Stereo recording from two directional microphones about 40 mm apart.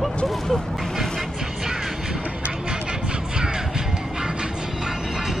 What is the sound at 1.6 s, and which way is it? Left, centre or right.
Music, centre.